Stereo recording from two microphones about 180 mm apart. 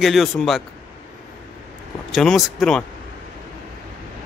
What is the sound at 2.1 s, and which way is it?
Speech, centre (ahead or behind).